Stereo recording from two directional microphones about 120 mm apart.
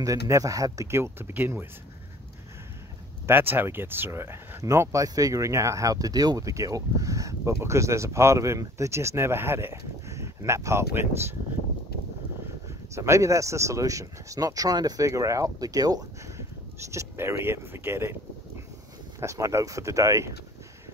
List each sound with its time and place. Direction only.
0.0 s speech: 25° right (ahead or behind)
3.3 s speech: 15° right (ahead or behind)
12.9 s speech: 25° right (ahead or behind)
19.1 s speech: 25° right (ahead or behind)